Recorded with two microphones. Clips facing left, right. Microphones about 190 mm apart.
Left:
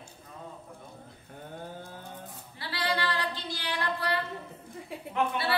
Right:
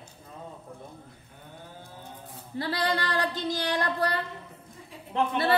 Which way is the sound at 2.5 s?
45° right (ahead or behind).